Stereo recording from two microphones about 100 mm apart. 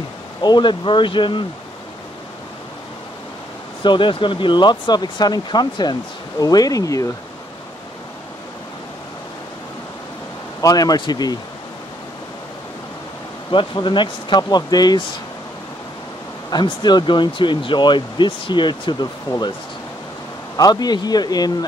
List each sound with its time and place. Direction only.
0.4 s speech: 50° left (ahead or behind)
3.8 s a man's voice: 50° left (ahead or behind); by 7.1 s 35° left (ahead or behind)
10.6 s a man's voice: 40° left (ahead or behind)
13.5 s speech: 55° left (ahead or behind)
16.4 s speech: 45° left (ahead or behind)
20.5 s a man's voice: 40° left (ahead or behind)